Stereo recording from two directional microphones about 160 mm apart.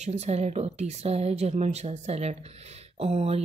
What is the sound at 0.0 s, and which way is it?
Speech, 45° right (ahead or behind).